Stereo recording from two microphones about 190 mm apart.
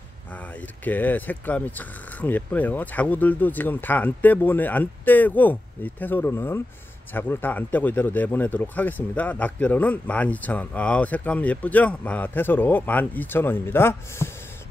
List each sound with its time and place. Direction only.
0.3 s speech: 10° left (ahead or behind)